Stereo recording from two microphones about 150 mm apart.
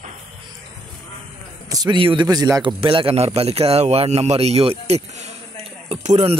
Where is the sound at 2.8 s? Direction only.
35° right (ahead or behind).